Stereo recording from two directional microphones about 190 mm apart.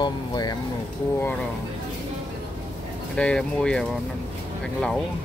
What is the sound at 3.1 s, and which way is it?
Speech, 5° left (ahead or behind).